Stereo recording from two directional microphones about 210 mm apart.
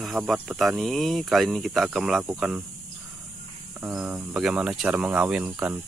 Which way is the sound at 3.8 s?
10° right (ahead or behind).